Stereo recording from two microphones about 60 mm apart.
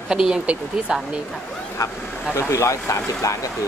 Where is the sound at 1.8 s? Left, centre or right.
Left.